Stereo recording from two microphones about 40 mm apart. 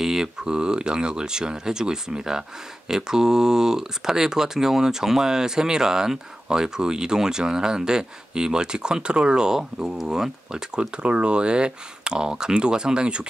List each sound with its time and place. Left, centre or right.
0.0 s speech: centre
10.8 s speech: right